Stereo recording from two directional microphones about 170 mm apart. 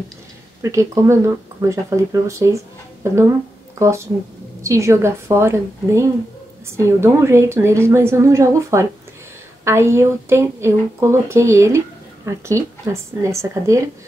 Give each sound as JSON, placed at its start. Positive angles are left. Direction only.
{"t": 0.6, "sound": "speech", "side_deg": -15}